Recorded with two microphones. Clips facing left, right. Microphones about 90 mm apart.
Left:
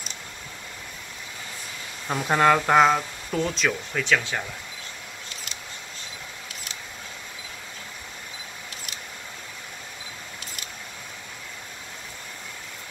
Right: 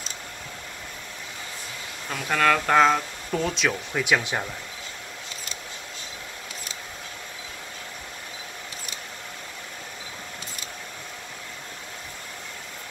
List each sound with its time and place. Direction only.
2.0 s speech: 25° left (ahead or behind); by 3.7 s centre (ahead or behind)
3.9 s speech: 15° right (ahead or behind)